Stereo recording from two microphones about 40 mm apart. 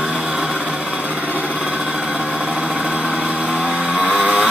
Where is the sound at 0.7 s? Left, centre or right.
Right.